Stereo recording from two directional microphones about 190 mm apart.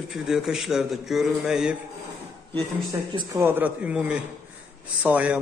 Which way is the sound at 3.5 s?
10° right (ahead or behind).